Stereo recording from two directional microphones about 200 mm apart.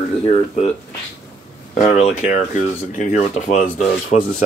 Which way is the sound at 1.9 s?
35° left (ahead or behind).